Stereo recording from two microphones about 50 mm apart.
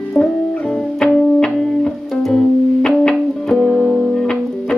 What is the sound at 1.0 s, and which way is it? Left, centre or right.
Music, centre.